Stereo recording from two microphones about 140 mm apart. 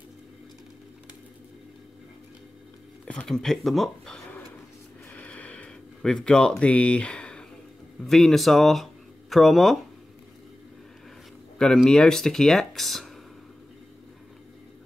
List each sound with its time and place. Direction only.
3.1 s speech: 5° left (ahead or behind)
5.1 s a sound: 10° left (ahead or behind)
8.0 s speech: centre (ahead or behind)
11.5 s speech: 5° left (ahead or behind)